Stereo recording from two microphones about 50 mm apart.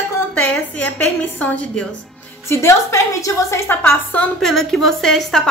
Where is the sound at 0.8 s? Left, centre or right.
Left.